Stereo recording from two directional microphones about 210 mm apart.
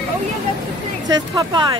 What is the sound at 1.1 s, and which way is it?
Speech, 20° right (ahead or behind).